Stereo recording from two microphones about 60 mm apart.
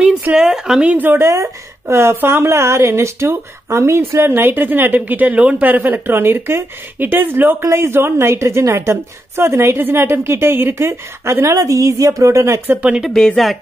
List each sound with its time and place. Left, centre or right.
0.3 s speech: centre
0.8 s a woman's voice: right
1.2 s a woman's voice: right
7.6 s a woman's voice: right
11.5 s a woman's voice: right
13.1 s speech: centre